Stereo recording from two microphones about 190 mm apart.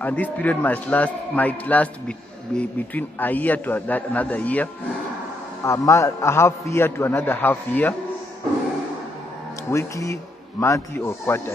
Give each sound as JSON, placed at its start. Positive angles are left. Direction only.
{"t": 0.0, "sound": "a man's voice", "side_deg": 10}
{"t": 5.7, "sound": "a man's voice", "side_deg": 15}
{"t": 9.7, "sound": "a man's voice", "side_deg": 15}